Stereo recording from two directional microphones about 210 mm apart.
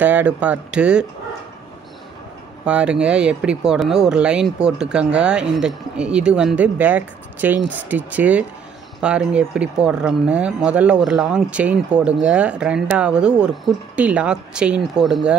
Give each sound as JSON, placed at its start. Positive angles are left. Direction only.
{"t": 0.0, "sound": "speech", "side_deg": -10}
{"t": 2.6, "sound": "speech", "side_deg": -5}